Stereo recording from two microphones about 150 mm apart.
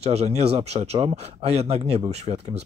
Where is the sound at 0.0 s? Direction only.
45° right (ahead or behind).